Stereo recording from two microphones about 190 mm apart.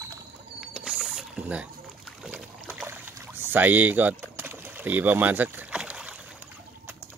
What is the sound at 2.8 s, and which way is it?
Boat, 10° right (ahead or behind).